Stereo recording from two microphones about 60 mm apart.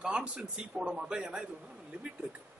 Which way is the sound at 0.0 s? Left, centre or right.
Centre.